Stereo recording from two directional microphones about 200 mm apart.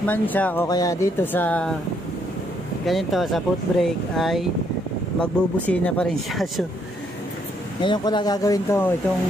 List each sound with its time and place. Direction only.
0.0 s speech: 10° left (ahead or behind)
2.8 s speech: centre (ahead or behind)
7.8 s speech: 20° left (ahead or behind)